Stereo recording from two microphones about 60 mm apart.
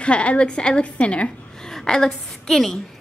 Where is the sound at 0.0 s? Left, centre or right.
Centre.